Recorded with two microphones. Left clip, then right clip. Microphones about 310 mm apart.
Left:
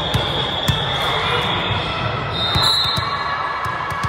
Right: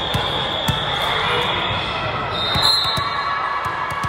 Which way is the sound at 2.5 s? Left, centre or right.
Centre.